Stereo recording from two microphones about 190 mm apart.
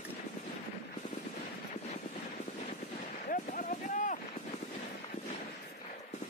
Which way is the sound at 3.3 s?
45° left (ahead or behind).